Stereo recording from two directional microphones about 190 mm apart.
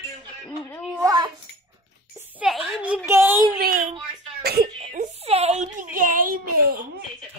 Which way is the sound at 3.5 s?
50° right (ahead or behind).